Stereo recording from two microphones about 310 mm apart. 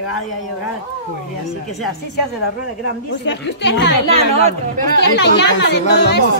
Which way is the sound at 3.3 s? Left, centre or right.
Left.